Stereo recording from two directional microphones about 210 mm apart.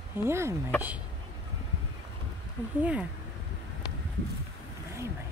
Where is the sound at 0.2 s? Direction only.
10° right (ahead or behind).